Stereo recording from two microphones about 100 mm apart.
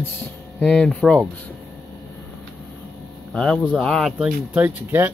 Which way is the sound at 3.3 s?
5° left (ahead or behind).